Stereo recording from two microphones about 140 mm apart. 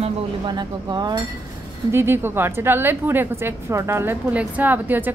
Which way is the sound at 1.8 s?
15° right (ahead or behind).